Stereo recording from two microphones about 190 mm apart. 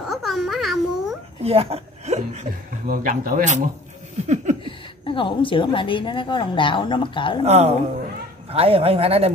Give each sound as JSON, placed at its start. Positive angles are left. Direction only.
{"t": 0.0, "sound": "babbling", "side_deg": 0}
{"t": 1.4, "sound": "a woman's voice", "side_deg": -30}
{"t": 2.9, "sound": "speech", "side_deg": -45}
{"t": 4.6, "sound": "a woman's voice", "side_deg": 25}
{"t": 7.4, "sound": "speech", "side_deg": -35}